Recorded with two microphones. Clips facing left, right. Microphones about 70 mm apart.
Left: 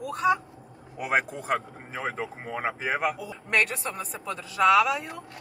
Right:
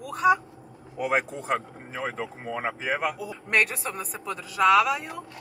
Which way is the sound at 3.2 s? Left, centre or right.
Centre.